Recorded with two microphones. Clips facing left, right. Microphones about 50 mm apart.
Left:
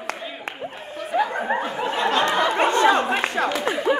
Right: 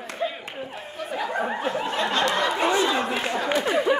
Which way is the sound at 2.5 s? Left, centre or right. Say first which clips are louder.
Left 4 dB; left.